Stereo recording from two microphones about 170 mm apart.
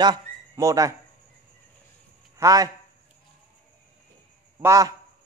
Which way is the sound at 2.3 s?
20° right (ahead or behind).